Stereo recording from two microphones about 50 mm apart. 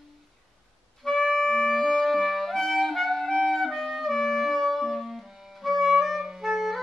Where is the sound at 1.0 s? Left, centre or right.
Centre.